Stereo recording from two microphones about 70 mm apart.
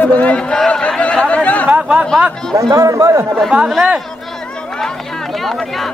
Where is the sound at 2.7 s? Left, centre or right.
Right.